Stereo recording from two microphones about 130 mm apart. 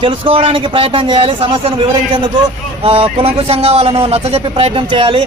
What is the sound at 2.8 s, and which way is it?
A man's voice, 45° right (ahead or behind).